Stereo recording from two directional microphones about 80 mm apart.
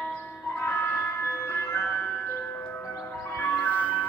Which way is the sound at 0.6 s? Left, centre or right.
Left.